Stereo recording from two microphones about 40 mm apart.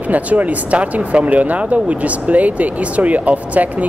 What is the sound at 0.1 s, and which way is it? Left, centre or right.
Speech, right.